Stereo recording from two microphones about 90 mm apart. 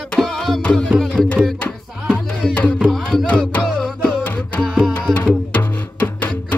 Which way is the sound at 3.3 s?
15° left (ahead or behind).